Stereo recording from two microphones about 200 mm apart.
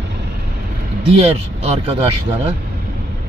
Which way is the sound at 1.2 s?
30° right (ahead or behind).